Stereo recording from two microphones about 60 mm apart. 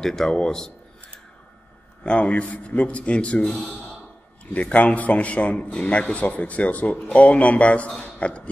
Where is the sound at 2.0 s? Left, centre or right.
Centre.